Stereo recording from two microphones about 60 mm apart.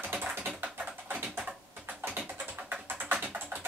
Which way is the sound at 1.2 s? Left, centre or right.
Right.